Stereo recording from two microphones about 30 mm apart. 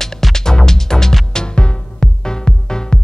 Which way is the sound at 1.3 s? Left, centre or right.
Left.